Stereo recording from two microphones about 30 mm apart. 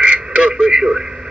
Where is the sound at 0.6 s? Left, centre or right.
Right.